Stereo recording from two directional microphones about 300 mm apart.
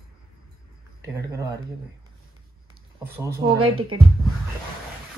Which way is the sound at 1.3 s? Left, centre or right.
Centre.